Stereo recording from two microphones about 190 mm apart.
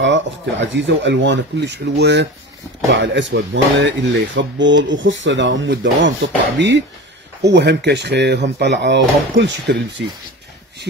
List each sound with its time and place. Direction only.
0.0 s speech: 70° right (ahead or behind)